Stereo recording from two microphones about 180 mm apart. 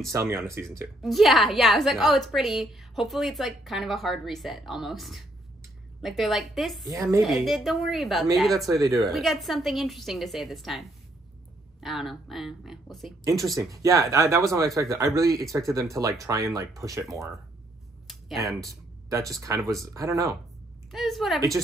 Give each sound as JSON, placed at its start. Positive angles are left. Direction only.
{"t": 0.1, "sound": "speech", "side_deg": -15}
{"t": 1.0, "sound": "a woman's voice", "side_deg": 0}
{"t": 6.9, "sound": "speech", "side_deg": -15}
{"t": 7.2, "sound": "a woman's voice", "side_deg": 0}
{"t": 8.6, "sound": "a woman's voice", "side_deg": -20}
{"t": 8.9, "sound": "a woman's voice", "side_deg": 0}
{"t": 13.2, "sound": "speech", "side_deg": -20}
{"t": 18.6, "sound": "speech", "side_deg": -20}
{"t": 19.6, "sound": "a woman's voice", "side_deg": 0}
{"t": 19.9, "sound": "speech", "side_deg": -15}
{"t": 20.9, "sound": "a woman's voice", "side_deg": 0}